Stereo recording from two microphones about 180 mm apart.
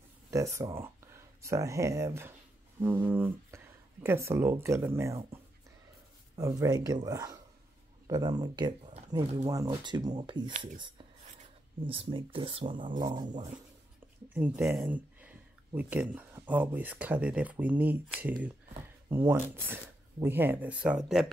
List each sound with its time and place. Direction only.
0.3 s speech: 15° right (ahead or behind)
8.9 s speech: 35° right (ahead or behind)
9.5 s speech: 20° right (ahead or behind)
14.3 s speech: 10° right (ahead or behind)